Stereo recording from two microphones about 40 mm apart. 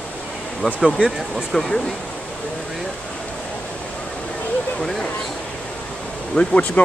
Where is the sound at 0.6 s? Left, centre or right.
Left.